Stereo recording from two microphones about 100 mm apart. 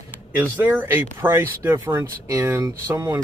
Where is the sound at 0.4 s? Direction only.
20° right (ahead or behind).